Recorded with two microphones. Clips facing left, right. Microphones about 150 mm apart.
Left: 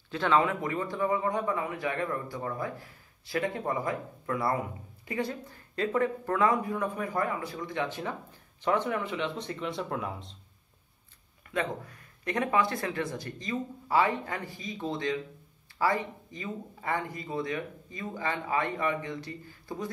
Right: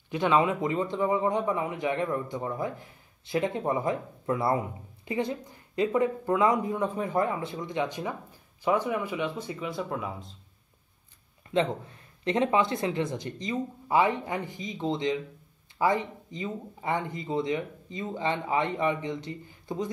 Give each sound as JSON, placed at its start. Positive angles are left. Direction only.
{"t": 0.1, "sound": "a man's voice", "side_deg": -15}
{"t": 11.5, "sound": "a man's voice", "side_deg": -25}